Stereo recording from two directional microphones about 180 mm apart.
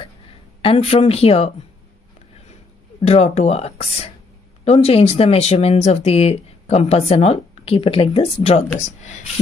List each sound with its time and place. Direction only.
0.6 s speech: 35° left (ahead or behind)
3.1 s speech: 35° left (ahead or behind)